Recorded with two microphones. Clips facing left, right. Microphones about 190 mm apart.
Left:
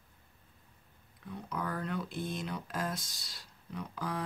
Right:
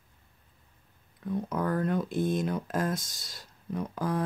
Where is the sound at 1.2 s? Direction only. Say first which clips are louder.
Right 8 dB; 45° right (ahead or behind).